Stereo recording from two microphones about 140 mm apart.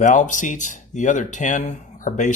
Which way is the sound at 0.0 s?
65° left (ahead or behind).